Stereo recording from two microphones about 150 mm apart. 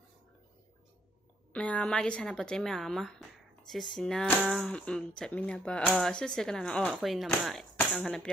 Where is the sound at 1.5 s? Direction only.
10° left (ahead or behind).